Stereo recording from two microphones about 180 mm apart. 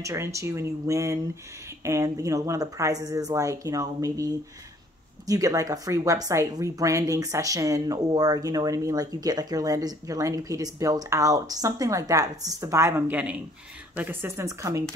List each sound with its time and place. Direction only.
0.0 s speech: 15° right (ahead or behind)